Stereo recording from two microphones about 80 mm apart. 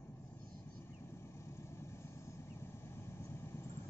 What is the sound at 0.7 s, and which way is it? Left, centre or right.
Vehicle, left.